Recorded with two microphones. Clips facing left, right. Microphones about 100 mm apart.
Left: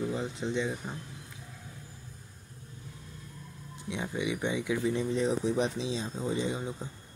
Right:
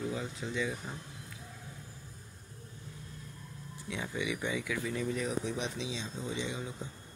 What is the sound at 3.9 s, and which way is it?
Speech, 20° left (ahead or behind).